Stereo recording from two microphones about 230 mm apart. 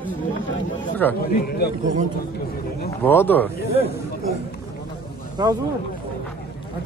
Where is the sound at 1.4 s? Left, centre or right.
Left.